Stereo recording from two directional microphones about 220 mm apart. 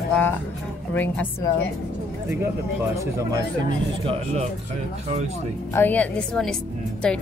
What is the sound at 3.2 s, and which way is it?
Speech, 15° right (ahead or behind).